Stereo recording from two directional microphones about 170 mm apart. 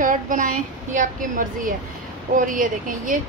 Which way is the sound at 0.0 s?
50° right (ahead or behind).